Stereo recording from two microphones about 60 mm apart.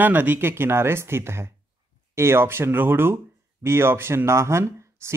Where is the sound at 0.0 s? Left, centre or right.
Right.